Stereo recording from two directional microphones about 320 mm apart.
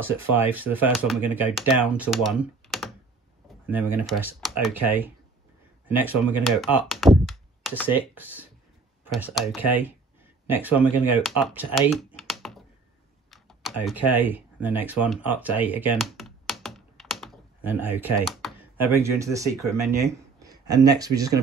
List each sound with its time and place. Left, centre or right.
0.0 s speech: centre
16.0 s computer keyboard: centre